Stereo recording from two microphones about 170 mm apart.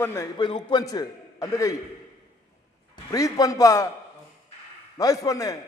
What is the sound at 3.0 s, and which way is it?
Speech, 20° left (ahead or behind).